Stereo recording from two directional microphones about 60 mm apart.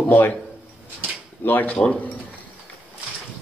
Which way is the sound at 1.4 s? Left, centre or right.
Left.